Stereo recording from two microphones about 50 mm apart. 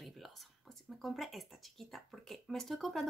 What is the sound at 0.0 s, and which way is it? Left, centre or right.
A woman's voice, centre.